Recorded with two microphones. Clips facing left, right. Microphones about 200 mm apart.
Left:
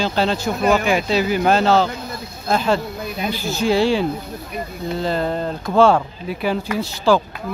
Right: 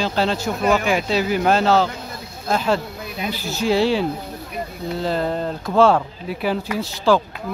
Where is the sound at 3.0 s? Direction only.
40° left (ahead or behind).